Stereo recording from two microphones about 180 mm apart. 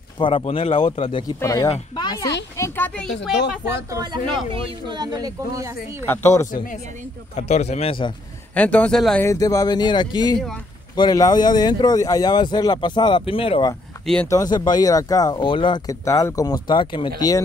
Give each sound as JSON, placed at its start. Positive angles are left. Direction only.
{"t": 0.2, "sound": "speech", "side_deg": 30}
{"t": 1.4, "sound": "speech", "side_deg": 20}
{"t": 3.9, "sound": "speech", "side_deg": -25}
{"t": 6.0, "sound": "a man's voice", "side_deg": 15}
{"t": 6.5, "sound": "a man's voice", "side_deg": 45}
{"t": 8.5, "sound": "a man's voice", "side_deg": 10}
{"t": 9.2, "sound": "speech", "side_deg": 15}
{"t": 14.2, "sound": "speech", "side_deg": 20}